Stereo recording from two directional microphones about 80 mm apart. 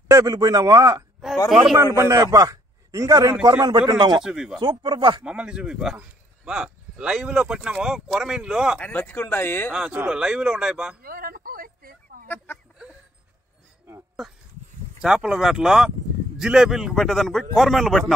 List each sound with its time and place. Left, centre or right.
0.1 s a man's voice: right
1.5 s a man's voice: centre
2.0 s a man's voice: right
3.9 s a man's voice: right
4.2 s speech: centre
4.6 s speech: right
5.2 s speech: centre
8.7 s speech: left
9.7 s speech: centre
14.2 s a man's voice: centre